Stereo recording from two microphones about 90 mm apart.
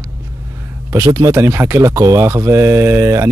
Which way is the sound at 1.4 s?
30° right (ahead or behind).